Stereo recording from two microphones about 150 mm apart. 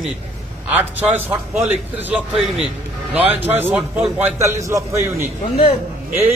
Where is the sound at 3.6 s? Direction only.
10° right (ahead or behind).